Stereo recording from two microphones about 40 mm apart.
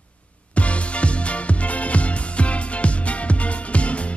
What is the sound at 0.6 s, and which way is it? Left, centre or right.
Music, left.